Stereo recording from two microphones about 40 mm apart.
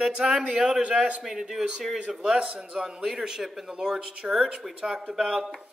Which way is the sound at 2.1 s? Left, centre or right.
Right.